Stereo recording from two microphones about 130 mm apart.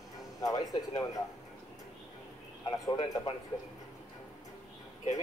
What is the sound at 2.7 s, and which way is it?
Speech, 25° left (ahead or behind).